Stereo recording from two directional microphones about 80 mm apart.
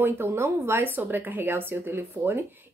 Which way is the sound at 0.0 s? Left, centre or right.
Right.